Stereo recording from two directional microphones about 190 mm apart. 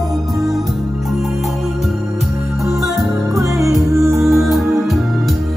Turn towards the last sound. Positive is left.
turn(degrees=0)  # may be behind; listen again after turning